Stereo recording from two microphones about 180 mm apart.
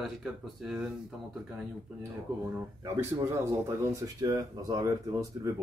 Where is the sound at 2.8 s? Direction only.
15° right (ahead or behind).